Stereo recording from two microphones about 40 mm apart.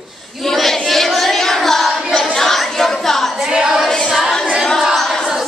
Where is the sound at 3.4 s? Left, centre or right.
Right.